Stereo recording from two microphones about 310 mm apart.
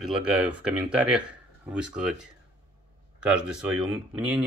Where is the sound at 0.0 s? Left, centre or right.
Centre.